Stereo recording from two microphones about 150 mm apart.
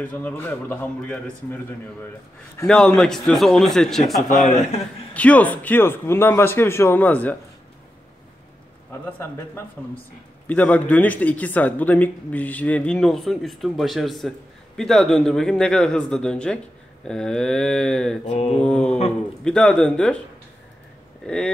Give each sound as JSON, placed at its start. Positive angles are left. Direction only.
{"t": 0.0, "sound": "a man's voice", "side_deg": 10}
{"t": 4.3, "sound": "mantra", "side_deg": 55}
{"t": 5.1, "sound": "speech", "side_deg": 10}
{"t": 10.4, "sound": "a man's voice", "side_deg": 10}
{"t": 18.2, "sound": "mantra", "side_deg": 45}
{"t": 18.6, "sound": "speech", "side_deg": 10}
{"t": 18.9, "sound": "speech", "side_deg": 40}
{"t": 19.4, "sound": "a man's voice", "side_deg": 5}